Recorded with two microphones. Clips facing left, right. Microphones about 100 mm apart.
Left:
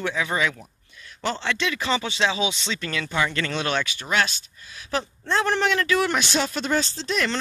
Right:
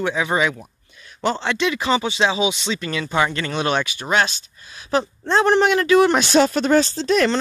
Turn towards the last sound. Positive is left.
turn(degrees=-50)  # may be behind; listen again after turning